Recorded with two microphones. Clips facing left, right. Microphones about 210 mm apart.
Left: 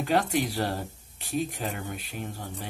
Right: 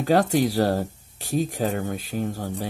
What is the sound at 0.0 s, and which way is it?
Speech, 40° right (ahead or behind).